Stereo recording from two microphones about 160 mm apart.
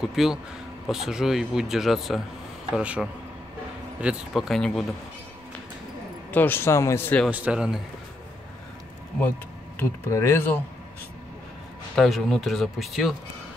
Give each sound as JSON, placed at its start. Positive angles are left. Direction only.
{"t": 0.0, "sound": "speech", "side_deg": 0}
{"t": 6.3, "sound": "speech", "side_deg": 10}
{"t": 7.2, "sound": "speech", "side_deg": -10}
{"t": 9.8, "sound": "speech", "side_deg": 15}
{"t": 11.9, "sound": "speech", "side_deg": 0}